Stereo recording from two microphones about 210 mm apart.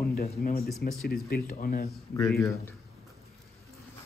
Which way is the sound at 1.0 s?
45° left (ahead or behind).